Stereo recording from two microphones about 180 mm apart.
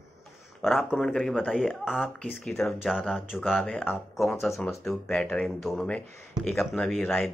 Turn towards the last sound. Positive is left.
turn(degrees=0)  # may be behind; listen again after turning